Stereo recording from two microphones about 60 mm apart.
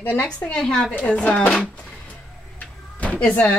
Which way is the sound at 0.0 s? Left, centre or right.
Left.